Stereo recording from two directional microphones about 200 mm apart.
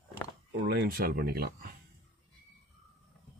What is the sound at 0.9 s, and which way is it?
Speech, 50° right (ahead or behind).